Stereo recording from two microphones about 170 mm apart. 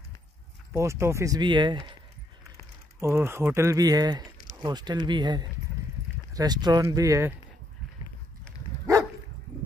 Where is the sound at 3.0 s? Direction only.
15° right (ahead or behind).